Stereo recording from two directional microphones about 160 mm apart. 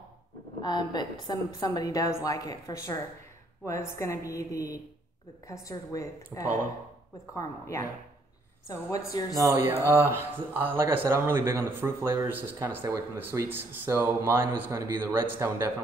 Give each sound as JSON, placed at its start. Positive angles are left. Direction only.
{"t": 0.6, "sound": "a woman's voice", "side_deg": 25}
{"t": 9.3, "sound": "speech", "side_deg": -20}